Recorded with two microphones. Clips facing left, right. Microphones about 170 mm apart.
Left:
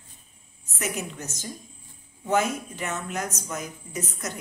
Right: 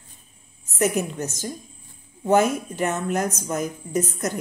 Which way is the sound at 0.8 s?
50° right (ahead or behind).